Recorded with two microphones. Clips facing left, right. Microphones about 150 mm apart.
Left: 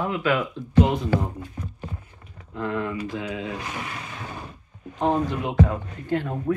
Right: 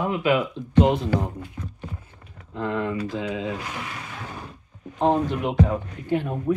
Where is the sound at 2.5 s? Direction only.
25° right (ahead or behind).